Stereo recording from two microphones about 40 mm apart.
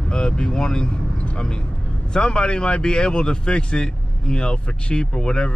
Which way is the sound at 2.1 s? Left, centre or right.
Left.